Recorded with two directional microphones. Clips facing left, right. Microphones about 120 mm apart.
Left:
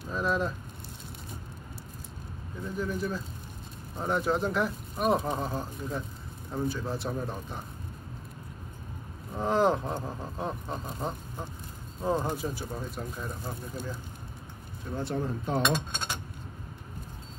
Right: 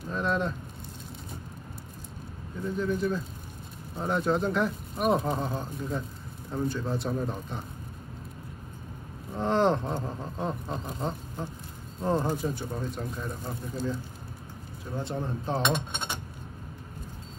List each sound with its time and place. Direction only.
0.0 s speech: 5° left (ahead or behind)
2.6 s speech: centre (ahead or behind)
9.3 s speech: 5° left (ahead or behind)
15.4 s speech: 25° right (ahead or behind)